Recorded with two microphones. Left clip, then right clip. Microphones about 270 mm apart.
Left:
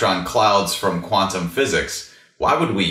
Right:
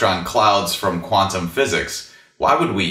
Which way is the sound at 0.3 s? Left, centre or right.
Right.